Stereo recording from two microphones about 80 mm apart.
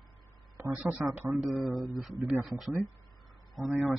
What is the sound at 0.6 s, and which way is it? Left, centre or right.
Speech, right.